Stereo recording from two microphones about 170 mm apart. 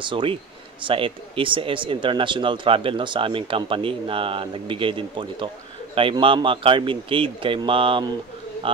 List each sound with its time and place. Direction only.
0.0 s speech: 30° right (ahead or behind)